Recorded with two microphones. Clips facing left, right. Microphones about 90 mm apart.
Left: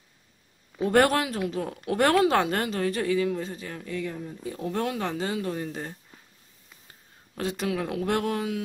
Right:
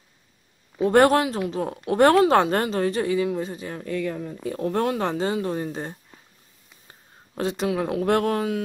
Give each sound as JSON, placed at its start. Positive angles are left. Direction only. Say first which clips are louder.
{"t": 0.8, "sound": "speech", "louder": "right 4 dB", "side_deg": -30}
{"t": 3.8, "sound": "speech", "louder": "right 6 dB", "side_deg": -60}
{"t": 7.3, "sound": "speech", "louder": "right 4 dB", "side_deg": -25}
{"t": 8.0, "sound": "speech", "louder": "right 6 dB", "side_deg": -50}